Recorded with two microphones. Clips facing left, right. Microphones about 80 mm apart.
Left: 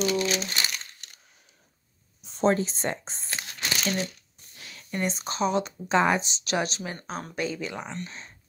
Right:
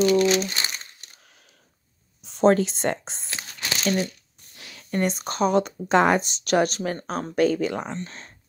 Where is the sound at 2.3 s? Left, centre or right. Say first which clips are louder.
Right 5 dB; right.